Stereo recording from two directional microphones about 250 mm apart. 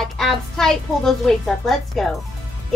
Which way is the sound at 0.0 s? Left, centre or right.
Centre.